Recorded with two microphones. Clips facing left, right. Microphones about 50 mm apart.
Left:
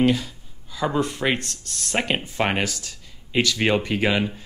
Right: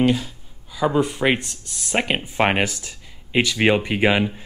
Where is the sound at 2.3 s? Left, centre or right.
Right.